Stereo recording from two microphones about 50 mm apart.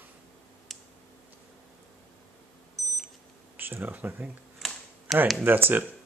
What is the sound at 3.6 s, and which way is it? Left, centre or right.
Speech, right.